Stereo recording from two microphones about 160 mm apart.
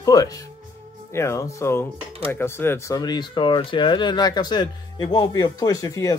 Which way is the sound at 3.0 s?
25° left (ahead or behind).